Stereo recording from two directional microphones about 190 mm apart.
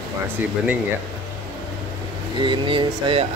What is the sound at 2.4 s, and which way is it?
Speech, 25° right (ahead or behind).